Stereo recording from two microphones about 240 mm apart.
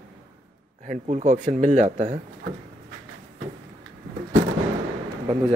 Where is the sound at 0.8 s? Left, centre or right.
Right.